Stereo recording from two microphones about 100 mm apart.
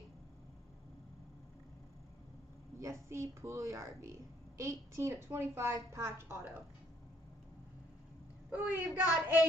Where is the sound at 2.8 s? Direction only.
30° right (ahead or behind).